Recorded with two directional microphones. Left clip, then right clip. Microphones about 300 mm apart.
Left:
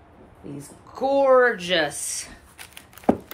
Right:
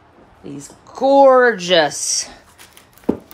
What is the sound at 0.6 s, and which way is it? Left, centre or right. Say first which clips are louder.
Speech: right 7 dB; centre.